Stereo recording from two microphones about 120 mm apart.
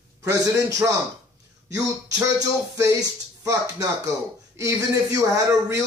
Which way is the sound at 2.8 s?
25° right (ahead or behind).